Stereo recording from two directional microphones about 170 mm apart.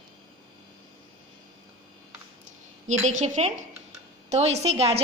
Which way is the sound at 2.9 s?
45° right (ahead or behind).